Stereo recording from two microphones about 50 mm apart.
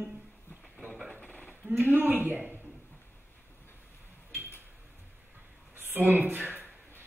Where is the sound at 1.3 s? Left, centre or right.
Left.